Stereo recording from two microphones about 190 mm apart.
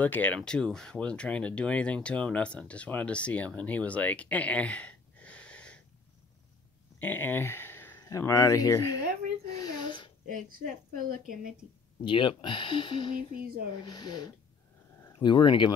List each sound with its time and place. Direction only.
0.0 s speech: 10° left (ahead or behind)
7.0 s speech: 10° left (ahead or behind)
9.5 s a sound: 20° left (ahead or behind)
10.2 s a woman's voice: 45° right (ahead or behind)
12.0 s speech: 25° left (ahead or behind)
13.3 s a woman's voice: 50° right (ahead or behind)
13.8 s speech: 20° left (ahead or behind)